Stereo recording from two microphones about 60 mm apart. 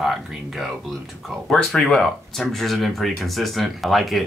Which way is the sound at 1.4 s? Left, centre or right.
Centre.